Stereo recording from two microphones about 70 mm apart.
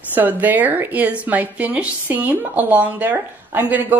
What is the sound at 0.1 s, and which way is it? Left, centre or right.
A woman's voice, right.